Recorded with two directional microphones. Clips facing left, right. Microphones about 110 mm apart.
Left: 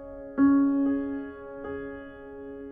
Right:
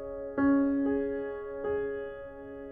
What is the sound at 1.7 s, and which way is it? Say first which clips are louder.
Music: right 5 dB; 30° left (ahead or behind).